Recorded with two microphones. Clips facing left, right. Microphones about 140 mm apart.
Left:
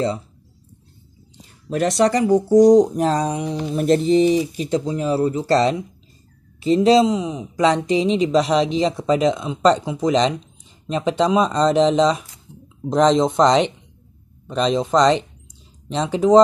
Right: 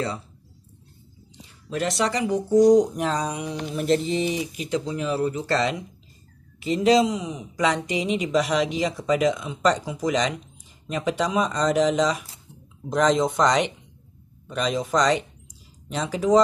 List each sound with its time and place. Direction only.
1.7 s speech: 45° left (ahead or behind)